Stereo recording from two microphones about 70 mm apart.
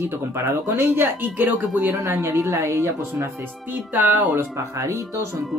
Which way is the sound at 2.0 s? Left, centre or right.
Right.